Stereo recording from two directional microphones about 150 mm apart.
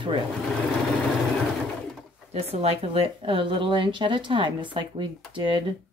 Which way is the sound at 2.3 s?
45° right (ahead or behind).